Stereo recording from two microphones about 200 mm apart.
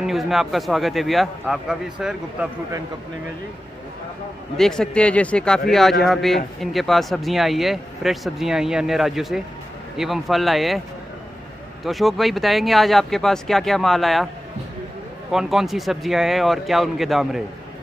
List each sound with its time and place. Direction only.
0.0 s speech: centre (ahead or behind)
4.6 s speech: 5° left (ahead or behind)
11.8 s speech: centre (ahead or behind)
15.3 s speech: centre (ahead or behind)